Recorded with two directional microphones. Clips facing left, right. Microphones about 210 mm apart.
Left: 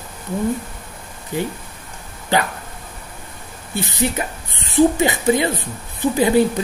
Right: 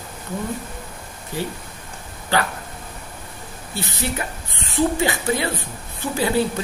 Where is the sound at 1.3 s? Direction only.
15° left (ahead or behind).